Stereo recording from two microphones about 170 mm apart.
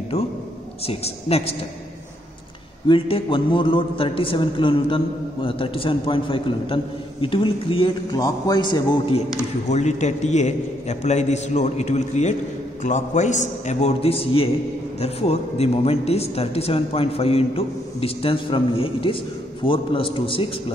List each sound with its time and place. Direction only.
0.8 s a man's voice: 35° left (ahead or behind)
2.9 s a man's voice: 30° left (ahead or behind)
9.7 s a man's voice: 45° left (ahead or behind)